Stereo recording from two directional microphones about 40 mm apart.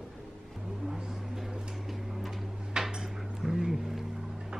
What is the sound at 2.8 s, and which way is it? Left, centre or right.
Dishes, centre.